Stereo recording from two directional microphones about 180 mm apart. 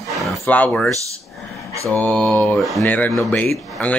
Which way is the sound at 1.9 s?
5° left (ahead or behind).